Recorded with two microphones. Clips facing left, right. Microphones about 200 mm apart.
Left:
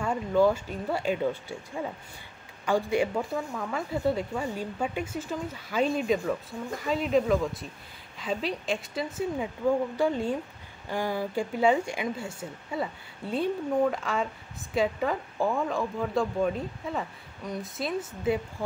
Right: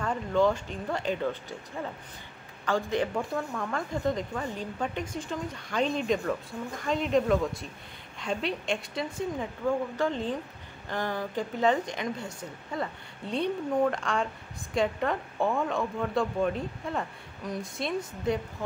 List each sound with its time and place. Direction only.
0.0 s a woman's voice: 10° left (ahead or behind)